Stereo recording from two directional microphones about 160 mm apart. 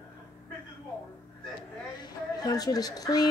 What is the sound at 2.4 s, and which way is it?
Speech, 25° left (ahead or behind).